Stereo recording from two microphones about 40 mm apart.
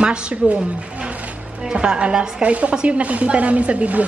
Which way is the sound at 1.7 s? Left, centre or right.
Right.